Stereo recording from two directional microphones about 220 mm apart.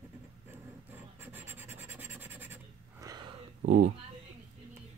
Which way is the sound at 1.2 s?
10° right (ahead or behind).